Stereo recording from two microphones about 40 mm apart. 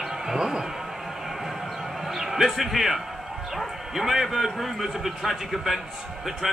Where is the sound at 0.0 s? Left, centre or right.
Centre.